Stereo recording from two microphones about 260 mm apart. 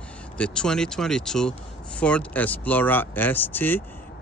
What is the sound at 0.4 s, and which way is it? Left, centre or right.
Speech, centre.